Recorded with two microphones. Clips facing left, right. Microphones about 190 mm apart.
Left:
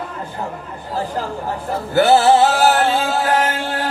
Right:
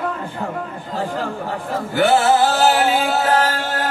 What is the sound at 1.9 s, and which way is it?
Music, 40° left (ahead or behind).